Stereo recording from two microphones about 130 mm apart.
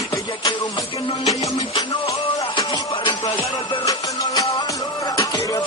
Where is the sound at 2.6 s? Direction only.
35° left (ahead or behind).